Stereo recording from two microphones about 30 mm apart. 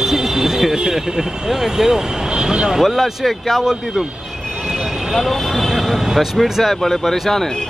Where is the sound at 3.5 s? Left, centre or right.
Centre.